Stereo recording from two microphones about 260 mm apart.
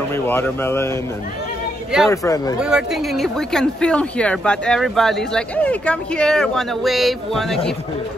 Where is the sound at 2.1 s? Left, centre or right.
Centre.